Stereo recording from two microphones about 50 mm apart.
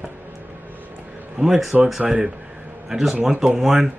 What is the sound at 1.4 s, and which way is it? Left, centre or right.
Speech, centre.